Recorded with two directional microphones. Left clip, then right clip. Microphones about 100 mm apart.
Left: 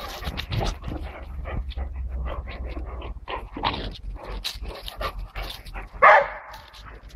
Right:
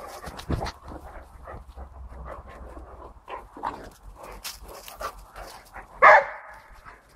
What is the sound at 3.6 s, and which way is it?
Dog, 10° left (ahead or behind).